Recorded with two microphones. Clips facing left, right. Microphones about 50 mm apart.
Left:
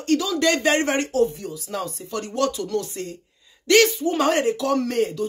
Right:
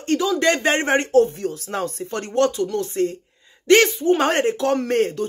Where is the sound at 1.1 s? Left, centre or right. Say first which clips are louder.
Right 5 dB; right.